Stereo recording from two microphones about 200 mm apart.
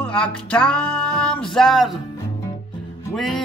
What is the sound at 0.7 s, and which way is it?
Speech, 5° left (ahead or behind).